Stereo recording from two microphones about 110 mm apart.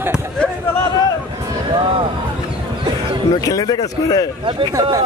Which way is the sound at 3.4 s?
35° left (ahead or behind).